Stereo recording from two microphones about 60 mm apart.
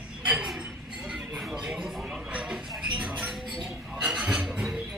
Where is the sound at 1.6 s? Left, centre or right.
Centre.